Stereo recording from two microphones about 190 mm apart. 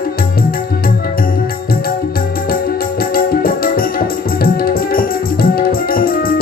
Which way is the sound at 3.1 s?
50° left (ahead or behind).